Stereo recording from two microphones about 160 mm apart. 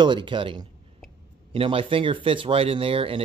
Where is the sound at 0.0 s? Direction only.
30° right (ahead or behind).